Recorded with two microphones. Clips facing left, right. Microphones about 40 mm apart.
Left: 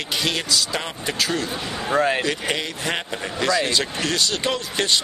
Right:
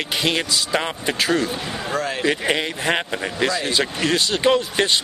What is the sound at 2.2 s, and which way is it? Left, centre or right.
Speech, centre.